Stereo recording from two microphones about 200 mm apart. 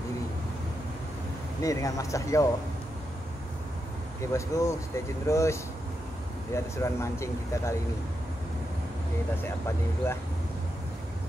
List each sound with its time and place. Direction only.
1.6 s speech: 15° left (ahead or behind)
4.3 s speech: 15° left (ahead or behind)
9.4 s speech: 10° left (ahead or behind)